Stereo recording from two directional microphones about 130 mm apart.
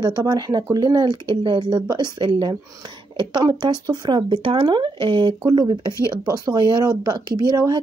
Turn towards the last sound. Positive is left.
turn(degrees=-30)  # may be behind; listen again after turning